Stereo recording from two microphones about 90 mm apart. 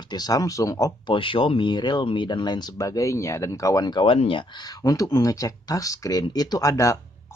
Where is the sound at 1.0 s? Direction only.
75° left (ahead or behind); by 4.0 s 45° left (ahead or behind).